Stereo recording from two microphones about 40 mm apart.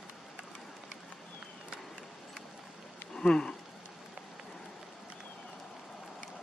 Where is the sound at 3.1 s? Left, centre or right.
Centre.